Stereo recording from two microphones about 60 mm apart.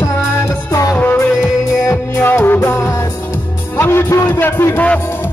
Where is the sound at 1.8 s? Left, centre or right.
Left.